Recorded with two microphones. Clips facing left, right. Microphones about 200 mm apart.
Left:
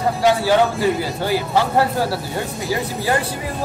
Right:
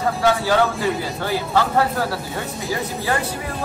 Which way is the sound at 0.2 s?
20° left (ahead or behind).